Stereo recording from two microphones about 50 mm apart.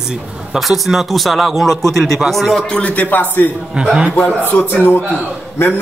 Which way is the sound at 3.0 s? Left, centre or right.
Left.